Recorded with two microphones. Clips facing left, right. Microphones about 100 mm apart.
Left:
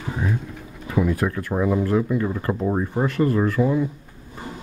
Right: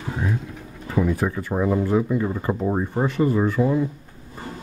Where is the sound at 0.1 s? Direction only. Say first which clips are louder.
Even; centre (ahead or behind).